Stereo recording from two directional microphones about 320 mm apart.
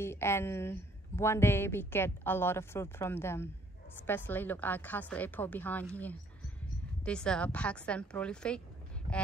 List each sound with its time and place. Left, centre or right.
0.0 s a woman's voice: centre